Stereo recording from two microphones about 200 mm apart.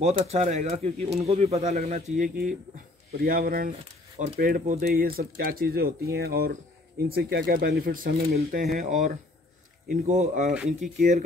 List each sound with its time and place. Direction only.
0.0 s speech: 30° right (ahead or behind)